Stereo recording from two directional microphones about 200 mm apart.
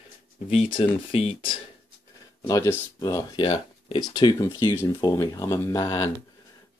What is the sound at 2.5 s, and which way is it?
Speech, 15° left (ahead or behind).